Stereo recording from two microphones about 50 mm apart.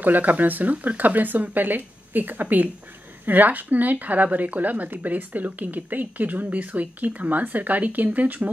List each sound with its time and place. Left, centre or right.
0.0 s speech: right